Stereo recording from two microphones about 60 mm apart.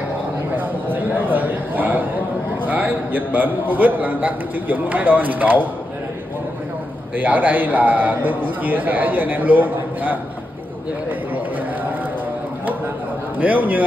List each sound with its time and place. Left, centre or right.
0.6 s a sound: right
7.2 s a man's voice: right
11.1 s run: right
13.4 s a man's voice: right